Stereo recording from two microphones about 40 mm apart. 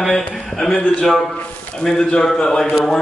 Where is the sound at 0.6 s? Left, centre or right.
Centre.